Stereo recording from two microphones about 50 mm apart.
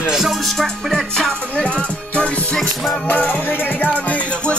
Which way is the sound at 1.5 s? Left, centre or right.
Left.